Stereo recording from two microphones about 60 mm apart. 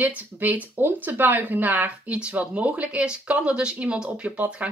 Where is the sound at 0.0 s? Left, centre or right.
Right.